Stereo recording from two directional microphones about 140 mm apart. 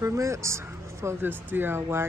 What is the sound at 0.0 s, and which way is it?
A woman's voice, 20° right (ahead or behind).